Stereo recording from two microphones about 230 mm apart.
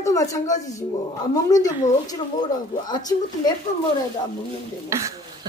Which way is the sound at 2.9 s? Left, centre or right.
Centre.